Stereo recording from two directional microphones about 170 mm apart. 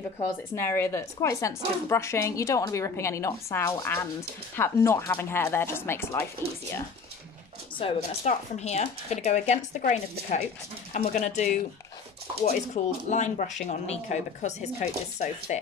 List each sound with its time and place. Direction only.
0.2 s a woman's voice: 15° left (ahead or behind)
7.8 s speech: 40° left (ahead or behind)